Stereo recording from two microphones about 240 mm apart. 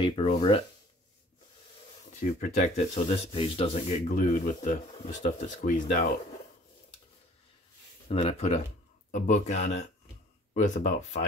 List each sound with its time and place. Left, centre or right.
0.0 s speech: left
2.2 s speech: left
8.1 s speech: left